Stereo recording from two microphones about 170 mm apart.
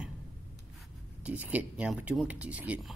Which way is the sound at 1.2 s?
10° right (ahead or behind).